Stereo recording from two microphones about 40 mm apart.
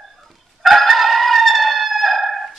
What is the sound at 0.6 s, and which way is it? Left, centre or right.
Crowing, centre.